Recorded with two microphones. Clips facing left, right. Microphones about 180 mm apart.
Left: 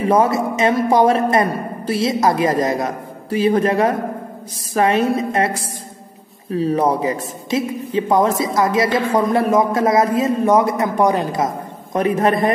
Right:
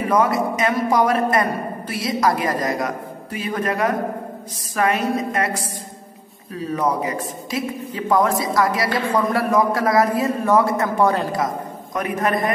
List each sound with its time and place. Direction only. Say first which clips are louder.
0.1 s a woman's voice: left 2 dB; 25° left (ahead or behind)
6.5 s a woman's voice: left 5 dB; 30° left (ahead or behind)
11.9 s a woman's voice: left 5 dB; 30° left (ahead or behind)